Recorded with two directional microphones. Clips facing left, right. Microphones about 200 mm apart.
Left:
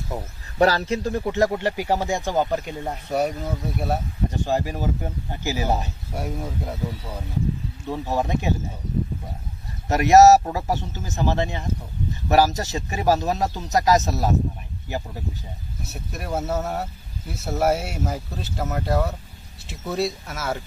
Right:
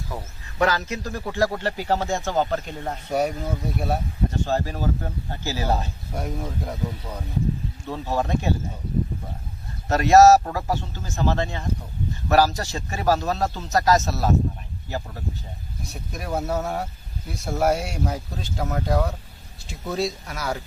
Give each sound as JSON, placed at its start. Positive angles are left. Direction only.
{"t": 0.1, "sound": "speech", "side_deg": 25}
{"t": 3.1, "sound": "speech", "side_deg": 0}
{"t": 4.3, "sound": "speech", "side_deg": 15}
{"t": 9.8, "sound": "speech", "side_deg": 20}